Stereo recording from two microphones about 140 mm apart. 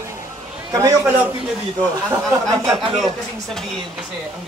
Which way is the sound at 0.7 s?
25° right (ahead or behind).